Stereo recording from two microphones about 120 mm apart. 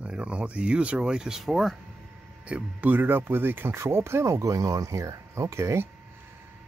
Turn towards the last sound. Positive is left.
turn(degrees=-25)  # may be behind; listen again after turning